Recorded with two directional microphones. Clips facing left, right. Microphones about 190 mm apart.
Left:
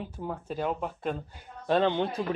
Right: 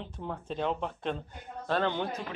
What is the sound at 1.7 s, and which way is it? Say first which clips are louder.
Speech: left 5 dB; 20° left (ahead or behind).